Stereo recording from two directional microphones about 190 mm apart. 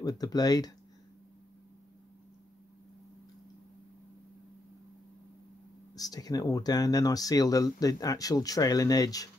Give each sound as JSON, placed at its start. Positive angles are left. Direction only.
{"t": 0.0, "sound": "speech", "side_deg": 20}
{"t": 5.9, "sound": "speech", "side_deg": 20}